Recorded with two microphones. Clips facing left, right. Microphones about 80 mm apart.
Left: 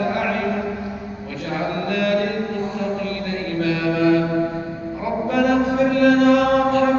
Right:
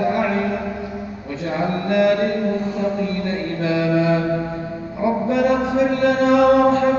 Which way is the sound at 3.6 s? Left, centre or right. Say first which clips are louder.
Right 2 dB; right.